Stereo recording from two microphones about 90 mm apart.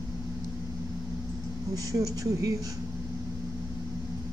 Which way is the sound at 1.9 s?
40° right (ahead or behind).